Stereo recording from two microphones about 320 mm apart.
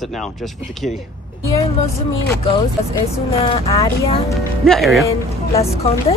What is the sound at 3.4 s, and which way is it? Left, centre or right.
Speech, centre.